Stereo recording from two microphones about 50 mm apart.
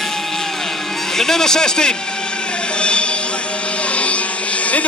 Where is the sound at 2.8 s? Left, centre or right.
Left.